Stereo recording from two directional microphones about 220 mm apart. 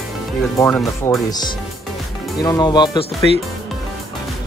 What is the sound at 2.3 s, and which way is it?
Speech, 15° left (ahead or behind).